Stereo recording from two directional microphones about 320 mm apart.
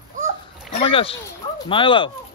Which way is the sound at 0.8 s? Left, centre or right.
Centre.